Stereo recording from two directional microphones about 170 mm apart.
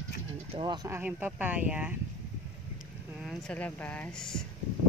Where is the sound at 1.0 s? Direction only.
10° right (ahead or behind).